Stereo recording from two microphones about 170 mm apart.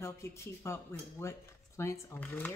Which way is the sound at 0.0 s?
15° left (ahead or behind).